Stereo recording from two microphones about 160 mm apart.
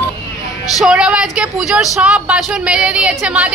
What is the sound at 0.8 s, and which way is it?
Speech, 5° right (ahead or behind).